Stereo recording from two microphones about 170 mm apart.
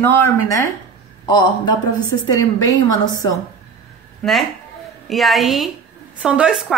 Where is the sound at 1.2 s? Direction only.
25° left (ahead or behind).